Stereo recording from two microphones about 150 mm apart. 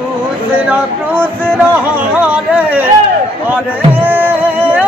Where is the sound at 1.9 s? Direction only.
10° right (ahead or behind).